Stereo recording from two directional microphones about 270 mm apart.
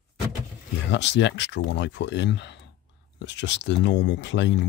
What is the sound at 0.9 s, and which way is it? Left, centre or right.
Speech, left.